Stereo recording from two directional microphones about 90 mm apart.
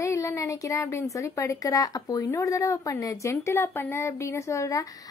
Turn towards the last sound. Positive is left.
turn(degrees=35)  # may be behind; listen again after turning